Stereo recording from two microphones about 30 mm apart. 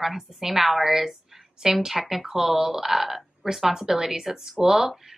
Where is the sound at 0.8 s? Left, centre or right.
Centre.